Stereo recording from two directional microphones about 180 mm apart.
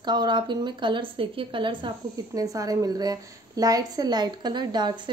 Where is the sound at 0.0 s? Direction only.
25° right (ahead or behind).